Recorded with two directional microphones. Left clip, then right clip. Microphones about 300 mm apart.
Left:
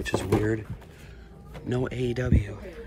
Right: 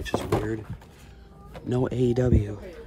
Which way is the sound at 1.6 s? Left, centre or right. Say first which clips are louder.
Right 4 dB; centre.